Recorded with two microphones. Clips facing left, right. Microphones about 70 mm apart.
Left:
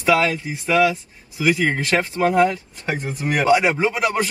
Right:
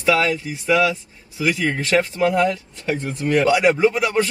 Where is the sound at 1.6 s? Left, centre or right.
Left.